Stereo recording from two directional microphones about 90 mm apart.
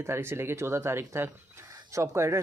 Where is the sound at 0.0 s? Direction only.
25° right (ahead or behind).